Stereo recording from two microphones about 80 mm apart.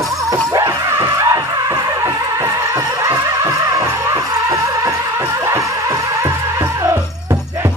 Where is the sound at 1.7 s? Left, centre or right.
Right.